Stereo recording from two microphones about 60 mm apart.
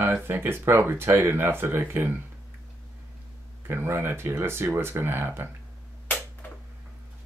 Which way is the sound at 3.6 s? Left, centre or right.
Right.